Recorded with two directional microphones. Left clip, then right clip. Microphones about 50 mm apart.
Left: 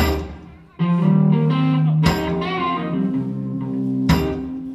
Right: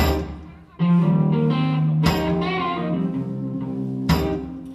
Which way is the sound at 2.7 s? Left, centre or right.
Centre.